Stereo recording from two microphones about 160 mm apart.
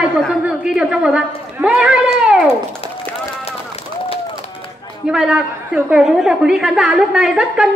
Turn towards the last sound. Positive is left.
turn(degrees=-5)  # may be behind; listen again after turning